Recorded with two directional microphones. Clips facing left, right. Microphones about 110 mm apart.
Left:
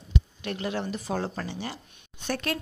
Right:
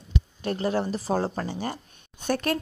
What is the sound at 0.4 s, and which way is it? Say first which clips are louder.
A woman's voice: right 8 dB; 35° right (ahead or behind).